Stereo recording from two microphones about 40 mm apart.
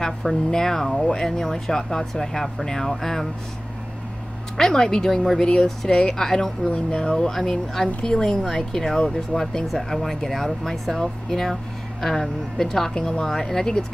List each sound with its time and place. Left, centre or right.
0.0 s speech: centre
4.6 s speech: centre
5.4 s speech: left
6.6 s speech: left
7.2 s speech: centre
9.7 s speech: centre
12.9 s speech: left